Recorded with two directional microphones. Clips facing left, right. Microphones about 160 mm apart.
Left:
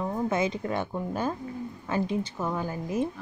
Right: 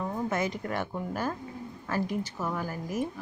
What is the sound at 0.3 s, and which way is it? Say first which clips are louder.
Speech: left 3 dB; 25° left (ahead or behind).